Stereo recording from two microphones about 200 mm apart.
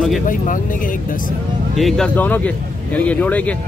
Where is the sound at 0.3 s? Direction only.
40° left (ahead or behind).